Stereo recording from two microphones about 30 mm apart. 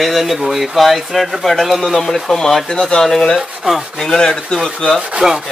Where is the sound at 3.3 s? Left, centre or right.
Centre.